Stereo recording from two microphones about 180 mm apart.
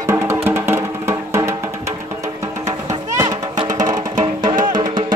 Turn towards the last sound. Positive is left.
turn(degrees=-25)  # may be behind; listen again after turning